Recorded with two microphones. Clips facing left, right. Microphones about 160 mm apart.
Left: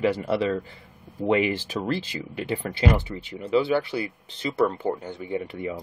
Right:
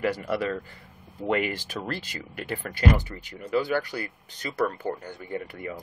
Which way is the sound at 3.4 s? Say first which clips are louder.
Left 4 dB; 25° left (ahead or behind).